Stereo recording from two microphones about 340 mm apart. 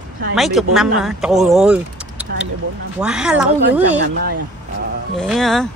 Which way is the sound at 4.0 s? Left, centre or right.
Right.